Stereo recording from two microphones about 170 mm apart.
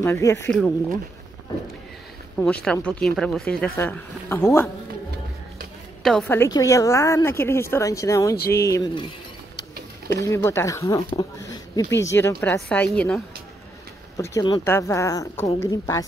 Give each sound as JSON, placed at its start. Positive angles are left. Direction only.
{"t": 0.0, "sound": "a woman's voice", "side_deg": 15}
{"t": 0.5, "sound": "speech", "side_deg": 5}
{"t": 2.3, "sound": "a woman's voice", "side_deg": 5}
{"t": 6.2, "sound": "a woman's voice", "side_deg": 15}
{"t": 10.2, "sound": "a woman's voice", "side_deg": 15}
{"t": 14.1, "sound": "a woman's voice", "side_deg": 20}